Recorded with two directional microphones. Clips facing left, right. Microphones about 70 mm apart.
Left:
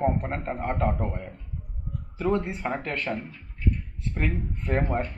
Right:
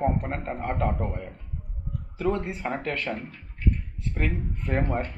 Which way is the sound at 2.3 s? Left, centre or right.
Centre.